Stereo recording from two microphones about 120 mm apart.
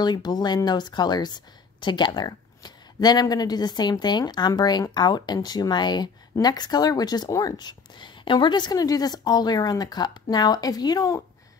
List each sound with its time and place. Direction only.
0.0 s speech: 35° left (ahead or behind)